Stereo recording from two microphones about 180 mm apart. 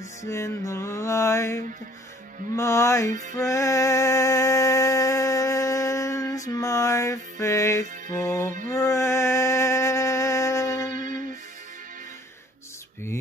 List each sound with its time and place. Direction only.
0.2 s music: 15° left (ahead or behind)
3.1 s music: 45° right (ahead or behind)
3.3 s music: 15° left (ahead or behind)
8.6 s mantra: 15° left (ahead or behind)
10.9 s music: 45° right (ahead or behind)